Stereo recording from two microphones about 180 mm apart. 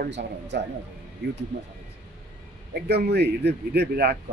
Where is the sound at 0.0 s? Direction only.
70° right (ahead or behind).